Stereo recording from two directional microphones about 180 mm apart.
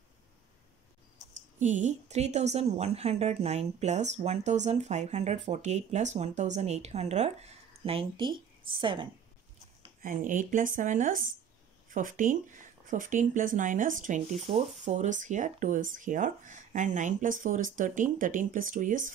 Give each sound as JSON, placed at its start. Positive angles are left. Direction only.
{"t": 1.6, "sound": "a woman's voice", "side_deg": -45}
{"t": 10.0, "sound": "speech", "side_deg": -45}